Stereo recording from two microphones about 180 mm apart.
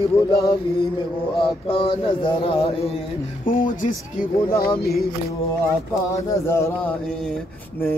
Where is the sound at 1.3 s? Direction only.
30° left (ahead or behind).